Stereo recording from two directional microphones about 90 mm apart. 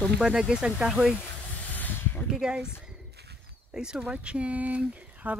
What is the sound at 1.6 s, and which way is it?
Spray, 20° left (ahead or behind).